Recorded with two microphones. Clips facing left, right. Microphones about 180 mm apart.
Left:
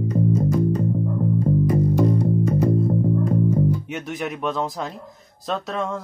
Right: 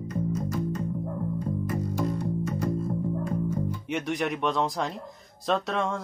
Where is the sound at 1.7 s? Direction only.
40° left (ahead or behind).